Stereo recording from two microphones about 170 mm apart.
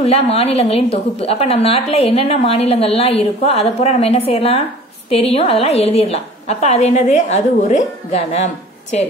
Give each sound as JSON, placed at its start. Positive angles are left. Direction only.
{"t": 0.0, "sound": "a woman's voice", "side_deg": 35}